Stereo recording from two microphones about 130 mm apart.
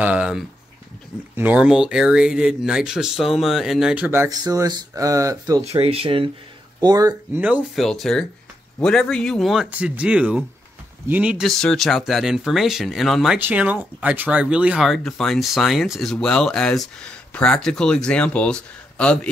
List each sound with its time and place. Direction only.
0.0 s a sound: 10° right (ahead or behind)
1.3 s speech: 10° right (ahead or behind)
4.3 s speech: 30° right (ahead or behind)
5.8 s speech: 45° right (ahead or behind)
6.8 s speech: 30° right (ahead or behind)
7.3 s a man's voice: 10° right (ahead or behind)
7.7 s a man's voice: centre (ahead or behind)
11.4 s speech: 5° left (ahead or behind)
13.4 s speech: 15° right (ahead or behind); by 19.1 s 10° left (ahead or behind)